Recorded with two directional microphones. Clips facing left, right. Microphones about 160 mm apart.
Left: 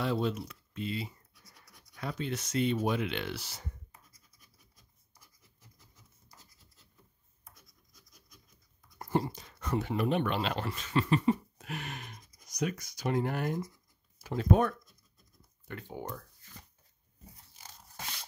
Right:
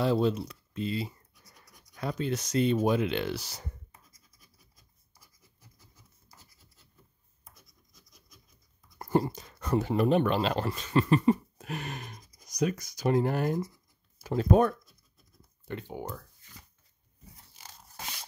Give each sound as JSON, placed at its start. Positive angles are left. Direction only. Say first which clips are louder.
{"t": 0.0, "sound": "speech", "louder": "right 5 dB", "side_deg": -35}
{"t": 8.9, "sound": "speech", "louder": "right 4 dB", "side_deg": -45}
{"t": 15.9, "sound": "speech", "louder": "right 2 dB", "side_deg": -10}